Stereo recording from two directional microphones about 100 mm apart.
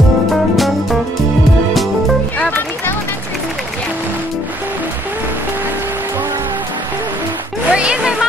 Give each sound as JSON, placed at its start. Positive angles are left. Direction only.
{"t": 0.3, "sound": "music", "side_deg": 0}
{"t": 2.3, "sound": "music", "side_deg": 15}
{"t": 7.7, "sound": "music", "side_deg": -10}